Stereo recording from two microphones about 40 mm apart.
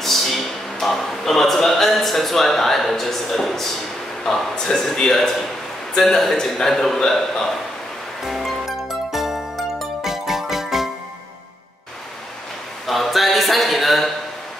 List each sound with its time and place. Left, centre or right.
0.0 s a man's voice: centre
8.2 s music: centre
10.0 s jingle: centre
12.8 s a sound: centre